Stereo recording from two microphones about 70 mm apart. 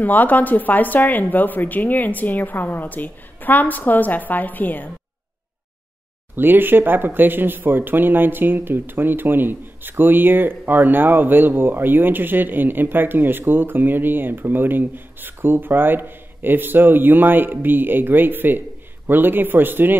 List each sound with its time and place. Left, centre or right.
0.0 s speech: left
6.3 s speech: right